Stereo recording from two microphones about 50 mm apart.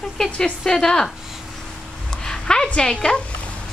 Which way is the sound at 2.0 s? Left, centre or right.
Centre.